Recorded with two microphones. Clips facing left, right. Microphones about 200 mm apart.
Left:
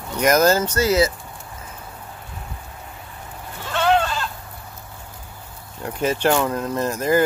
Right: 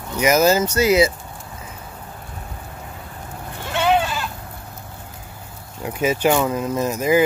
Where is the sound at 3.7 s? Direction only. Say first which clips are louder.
Even; 15° right (ahead or behind).